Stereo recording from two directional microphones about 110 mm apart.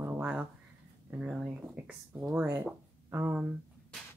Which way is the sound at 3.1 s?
20° right (ahead or behind).